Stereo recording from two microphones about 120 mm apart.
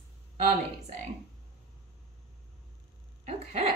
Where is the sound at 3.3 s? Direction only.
60° right (ahead or behind).